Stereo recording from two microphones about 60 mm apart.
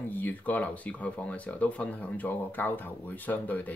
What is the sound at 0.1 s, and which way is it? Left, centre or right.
Speech, left.